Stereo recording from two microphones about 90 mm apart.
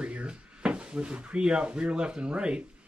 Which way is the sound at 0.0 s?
10° right (ahead or behind).